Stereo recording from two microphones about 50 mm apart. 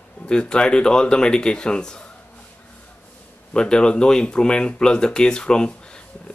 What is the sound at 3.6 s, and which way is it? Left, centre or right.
Speech, centre.